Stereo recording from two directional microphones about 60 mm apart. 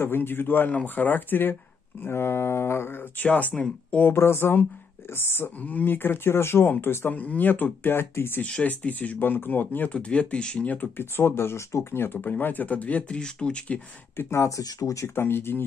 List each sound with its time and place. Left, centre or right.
0.0 s speech: left
3.3 s speech: left
4.0 s speech: left
5.6 s speech: left
7.2 s speech: left
8.6 s speech: left
9.9 s speech: centre
11.0 s speech: left; by 13.7 s centre
14.1 s speech: left
14.5 s speech: left
15.0 s speech: left